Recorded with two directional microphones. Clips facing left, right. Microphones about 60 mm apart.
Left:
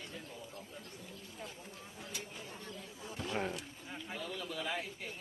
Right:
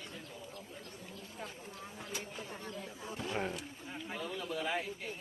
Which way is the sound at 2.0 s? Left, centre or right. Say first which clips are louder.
Right 3 dB; right.